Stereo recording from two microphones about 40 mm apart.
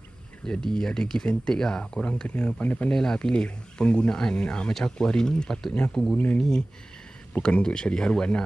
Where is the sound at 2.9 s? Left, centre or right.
Centre.